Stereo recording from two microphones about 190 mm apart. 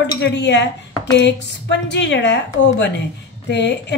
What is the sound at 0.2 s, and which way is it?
A woman's voice, 65° left (ahead or behind).